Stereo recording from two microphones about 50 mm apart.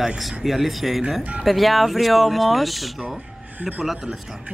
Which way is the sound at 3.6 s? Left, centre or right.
Centre.